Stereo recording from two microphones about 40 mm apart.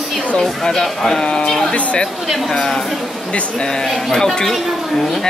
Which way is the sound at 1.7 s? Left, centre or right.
Left.